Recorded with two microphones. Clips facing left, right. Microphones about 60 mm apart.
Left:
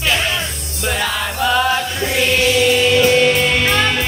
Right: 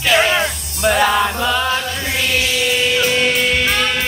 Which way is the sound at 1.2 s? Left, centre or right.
Centre.